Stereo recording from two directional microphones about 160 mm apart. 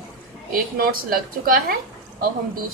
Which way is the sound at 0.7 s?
65° right (ahead or behind).